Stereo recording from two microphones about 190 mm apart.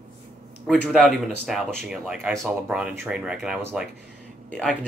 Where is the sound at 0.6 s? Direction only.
Centre (ahead or behind).